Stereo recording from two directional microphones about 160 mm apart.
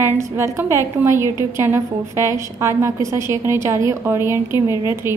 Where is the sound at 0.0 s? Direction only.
15° right (ahead or behind).